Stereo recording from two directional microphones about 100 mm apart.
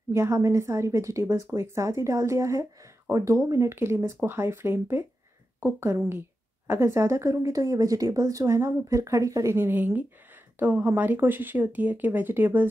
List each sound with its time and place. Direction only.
0.1 s a woman's voice: 30° right (ahead or behind)